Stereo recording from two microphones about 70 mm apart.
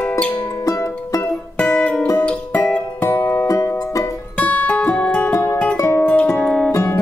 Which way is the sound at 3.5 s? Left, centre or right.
Left.